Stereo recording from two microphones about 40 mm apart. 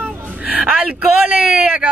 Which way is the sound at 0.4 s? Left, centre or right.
Right.